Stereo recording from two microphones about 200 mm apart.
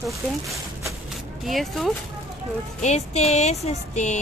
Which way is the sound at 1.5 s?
Centre (ahead or behind).